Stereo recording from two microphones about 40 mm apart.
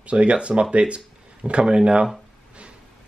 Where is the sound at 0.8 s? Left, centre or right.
Right.